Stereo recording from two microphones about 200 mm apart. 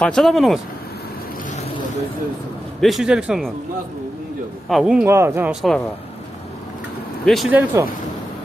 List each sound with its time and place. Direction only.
0.0 s speech: centre (ahead or behind)
2.8 s speech: centre (ahead or behind)
4.6 s speech: centre (ahead or behind)
7.2 s speech: 5° right (ahead or behind)